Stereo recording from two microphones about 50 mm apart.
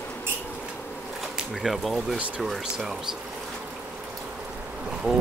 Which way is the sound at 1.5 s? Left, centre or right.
Centre.